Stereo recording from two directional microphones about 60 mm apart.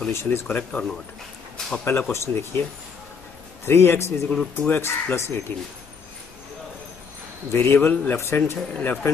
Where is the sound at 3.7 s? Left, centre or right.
Left.